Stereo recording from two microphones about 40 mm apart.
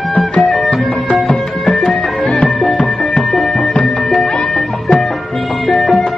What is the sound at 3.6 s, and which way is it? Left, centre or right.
Music, left.